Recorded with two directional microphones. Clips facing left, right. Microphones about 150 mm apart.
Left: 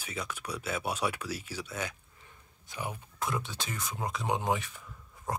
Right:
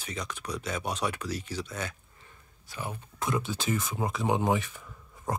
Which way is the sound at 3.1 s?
Centre (ahead or behind).